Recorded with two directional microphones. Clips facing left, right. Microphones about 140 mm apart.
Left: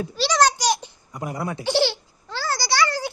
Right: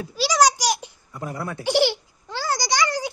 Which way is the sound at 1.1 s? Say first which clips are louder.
Left 2 dB; 15° left (ahead or behind).